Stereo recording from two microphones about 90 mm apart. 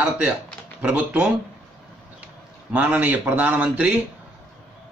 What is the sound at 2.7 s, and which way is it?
Speech, 15° right (ahead or behind).